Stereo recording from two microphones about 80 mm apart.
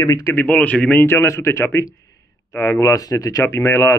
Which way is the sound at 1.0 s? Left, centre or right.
Left.